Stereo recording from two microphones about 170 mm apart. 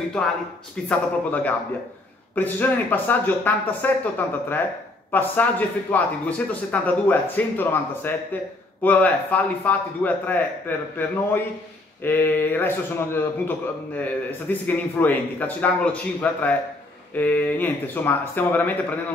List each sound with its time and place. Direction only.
0.8 s a man's voice: 10° left (ahead or behind)